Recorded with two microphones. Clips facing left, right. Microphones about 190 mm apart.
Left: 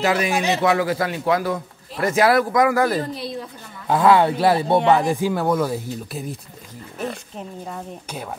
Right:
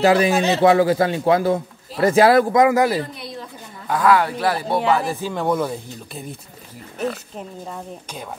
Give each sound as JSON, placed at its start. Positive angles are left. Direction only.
{"t": 0.0, "sound": "a man's voice", "side_deg": -30}
{"t": 3.8, "sound": "speech", "side_deg": 25}
{"t": 4.9, "sound": "speech", "side_deg": 15}
{"t": 5.4, "sound": "speech", "side_deg": 0}